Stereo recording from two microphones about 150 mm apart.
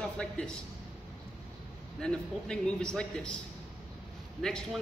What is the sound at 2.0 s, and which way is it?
A man's voice, 5° left (ahead or behind).